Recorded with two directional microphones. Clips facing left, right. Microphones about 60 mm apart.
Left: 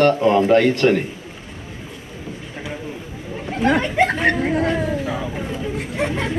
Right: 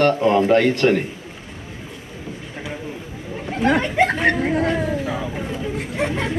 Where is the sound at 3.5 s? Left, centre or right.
Right.